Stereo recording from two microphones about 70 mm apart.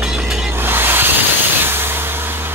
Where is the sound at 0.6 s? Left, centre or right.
Right.